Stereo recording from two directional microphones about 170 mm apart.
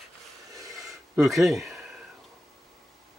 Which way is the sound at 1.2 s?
Centre (ahead or behind).